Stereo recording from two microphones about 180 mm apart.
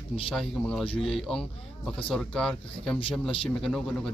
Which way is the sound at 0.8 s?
30° left (ahead or behind).